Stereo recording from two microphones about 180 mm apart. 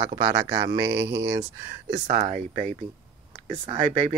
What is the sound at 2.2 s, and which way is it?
Speech, 35° right (ahead or behind).